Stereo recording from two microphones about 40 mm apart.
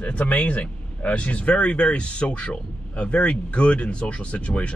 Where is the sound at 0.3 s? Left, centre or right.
Left.